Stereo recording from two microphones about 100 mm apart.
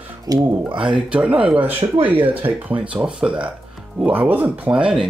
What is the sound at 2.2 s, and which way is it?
Speech, 65° right (ahead or behind).